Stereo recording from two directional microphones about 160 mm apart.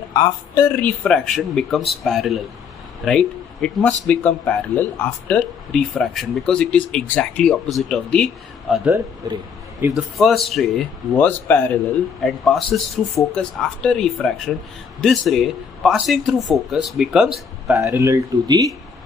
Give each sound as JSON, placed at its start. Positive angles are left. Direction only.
{"t": 0.1, "sound": "speech", "side_deg": 20}
{"t": 0.7, "sound": "speech", "side_deg": 5}
{"t": 9.2, "sound": "speech", "side_deg": -25}
{"t": 9.9, "sound": "speech", "side_deg": 0}
{"t": 17.8, "sound": "speech", "side_deg": -20}